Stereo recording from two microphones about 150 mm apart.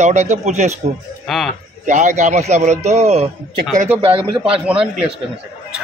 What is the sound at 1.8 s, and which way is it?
A man's voice, 55° right (ahead or behind).